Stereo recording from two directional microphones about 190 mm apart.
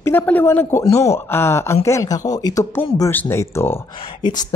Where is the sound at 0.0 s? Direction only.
10° left (ahead or behind).